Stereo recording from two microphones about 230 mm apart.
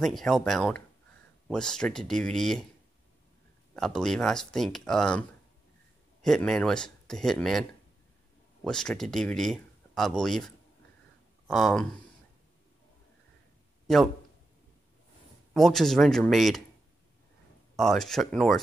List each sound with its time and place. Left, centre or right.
0.0 s speech: centre
3.7 s speech: centre
6.2 s speech: centre
8.6 s speech: centre
15.5 s speech: centre
17.7 s speech: centre